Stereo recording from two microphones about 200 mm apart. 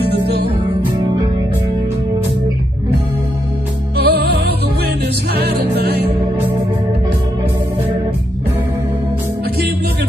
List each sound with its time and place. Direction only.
0.1 s music: 55° right (ahead or behind)
3.9 s music: 55° right (ahead or behind)